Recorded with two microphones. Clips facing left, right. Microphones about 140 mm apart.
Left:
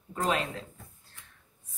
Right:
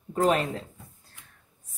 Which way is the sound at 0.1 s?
40° right (ahead or behind).